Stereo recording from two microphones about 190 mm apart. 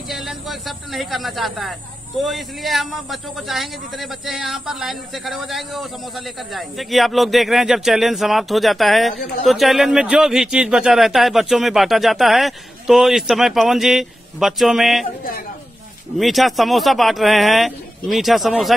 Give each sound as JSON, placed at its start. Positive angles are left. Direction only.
{"t": 0.1, "sound": "a man's voice", "side_deg": 0}
{"t": 16.2, "sound": "a man's voice", "side_deg": 0}